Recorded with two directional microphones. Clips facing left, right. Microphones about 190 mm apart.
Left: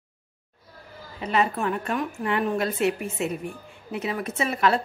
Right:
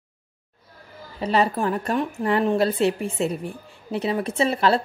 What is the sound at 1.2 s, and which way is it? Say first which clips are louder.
Speech: right 3 dB; 35° right (ahead or behind).